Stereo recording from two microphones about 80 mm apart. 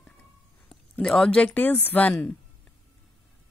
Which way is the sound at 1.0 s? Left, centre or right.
Centre.